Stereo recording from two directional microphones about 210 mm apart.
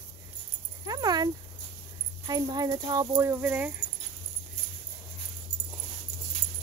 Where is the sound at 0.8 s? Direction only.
20° right (ahead or behind).